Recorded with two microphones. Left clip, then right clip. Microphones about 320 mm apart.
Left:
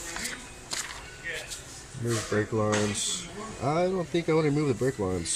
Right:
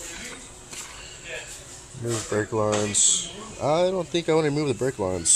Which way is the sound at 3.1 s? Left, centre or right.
Centre.